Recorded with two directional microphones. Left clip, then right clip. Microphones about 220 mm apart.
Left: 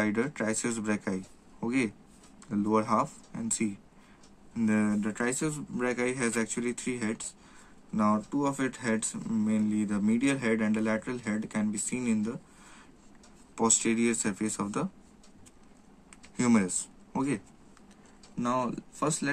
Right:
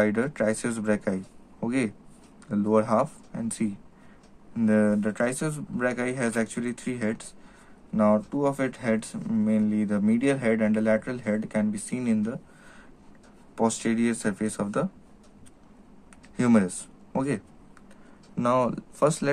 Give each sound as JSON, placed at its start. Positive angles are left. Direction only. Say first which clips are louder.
{"t": 0.0, "sound": "speech", "louder": "right 6 dB", "side_deg": -5}
{"t": 13.6, "sound": "speech", "louder": "right 2 dB", "side_deg": -5}
{"t": 16.3, "sound": "speech", "louder": "right 4 dB", "side_deg": -10}
{"t": 18.4, "sound": "speech", "louder": "right 7 dB", "side_deg": -20}